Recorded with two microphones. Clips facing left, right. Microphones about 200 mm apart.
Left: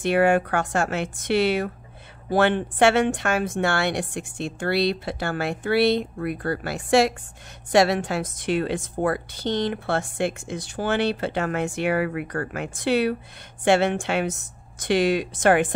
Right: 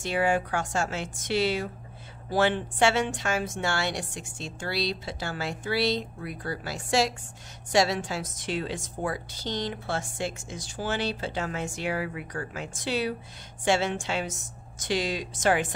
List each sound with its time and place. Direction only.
0.0 s a woman's voice: 60° left (ahead or behind)